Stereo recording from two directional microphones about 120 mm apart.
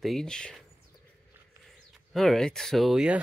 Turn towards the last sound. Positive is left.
turn(degrees=-5)  # may be behind; listen again after turning